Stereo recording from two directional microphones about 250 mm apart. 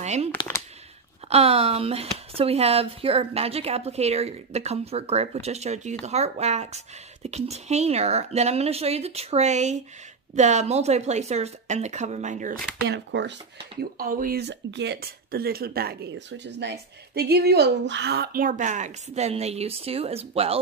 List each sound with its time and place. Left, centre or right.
0.0 s a sound: right
1.3 s speech: right
12.8 s speech: right